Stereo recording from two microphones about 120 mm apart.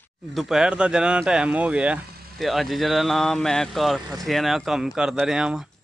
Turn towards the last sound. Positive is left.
turn(degrees=-5)  # may be behind; listen again after turning